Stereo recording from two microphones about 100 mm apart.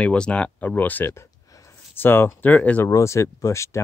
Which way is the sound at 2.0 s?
20° left (ahead or behind).